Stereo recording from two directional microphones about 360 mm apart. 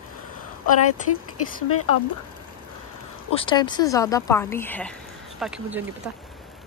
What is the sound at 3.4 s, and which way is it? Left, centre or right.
Speech, centre.